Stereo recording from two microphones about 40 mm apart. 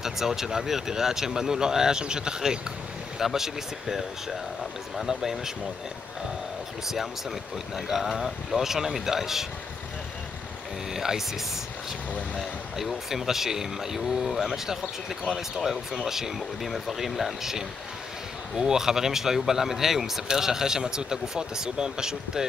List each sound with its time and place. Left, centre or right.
0.0 s speech: centre
5.0 s speech: centre
6.9 s speech: centre
10.9 s speech: centre
12.4 s speech: centre